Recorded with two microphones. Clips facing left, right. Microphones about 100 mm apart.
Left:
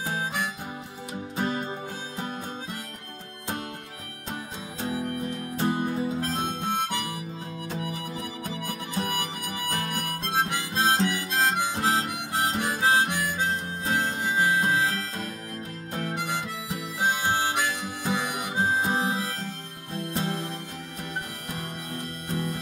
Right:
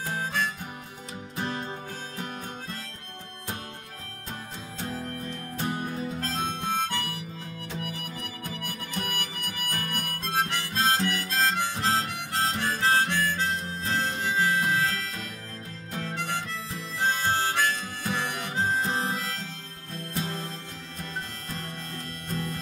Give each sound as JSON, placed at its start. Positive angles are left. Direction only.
{"t": 0.0, "sound": "music", "side_deg": 15}
{"t": 2.1, "sound": "harmonica", "side_deg": 20}
{"t": 4.7, "sound": "music", "side_deg": 15}
{"t": 6.0, "sound": "harmonica", "side_deg": 15}
{"t": 7.8, "sound": "music", "side_deg": 20}
{"t": 16.0, "sound": "harmonica", "side_deg": 15}
{"t": 19.9, "sound": "music", "side_deg": 15}